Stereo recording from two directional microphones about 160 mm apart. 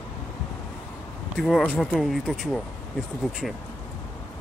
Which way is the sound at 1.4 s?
Centre (ahead or behind).